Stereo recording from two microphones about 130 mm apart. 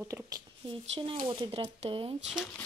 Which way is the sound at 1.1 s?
40° right (ahead or behind).